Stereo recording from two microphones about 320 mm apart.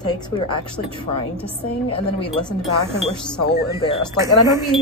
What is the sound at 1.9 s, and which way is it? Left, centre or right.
Speech, centre.